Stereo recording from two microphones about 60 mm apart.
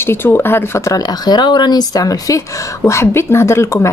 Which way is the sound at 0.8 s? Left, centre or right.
Left.